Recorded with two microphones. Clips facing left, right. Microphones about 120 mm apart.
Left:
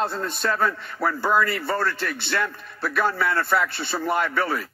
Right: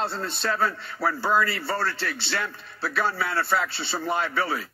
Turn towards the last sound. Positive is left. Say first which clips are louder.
# left 3 dB
turn(degrees=50)  # may be behind; listen again after turning